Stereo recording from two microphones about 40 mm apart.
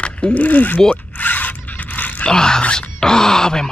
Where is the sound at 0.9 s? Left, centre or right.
Left.